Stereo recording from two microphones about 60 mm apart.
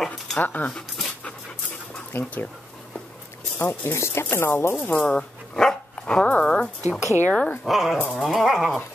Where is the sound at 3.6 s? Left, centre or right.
Left.